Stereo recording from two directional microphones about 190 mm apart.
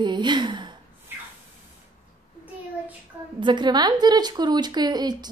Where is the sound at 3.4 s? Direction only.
25° right (ahead or behind).